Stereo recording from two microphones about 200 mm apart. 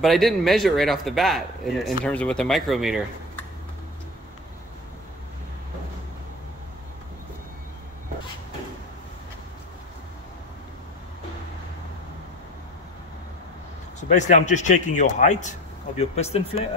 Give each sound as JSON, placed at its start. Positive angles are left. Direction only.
{"t": 0.0, "sound": "speech", "side_deg": 0}
{"t": 14.1, "sound": "a man's voice", "side_deg": 35}